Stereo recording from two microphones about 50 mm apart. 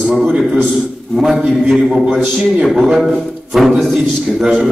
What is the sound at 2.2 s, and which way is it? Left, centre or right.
Speech, centre.